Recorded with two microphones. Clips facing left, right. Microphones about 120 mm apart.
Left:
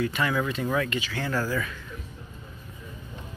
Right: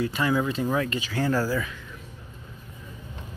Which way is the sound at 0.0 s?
25° right (ahead or behind).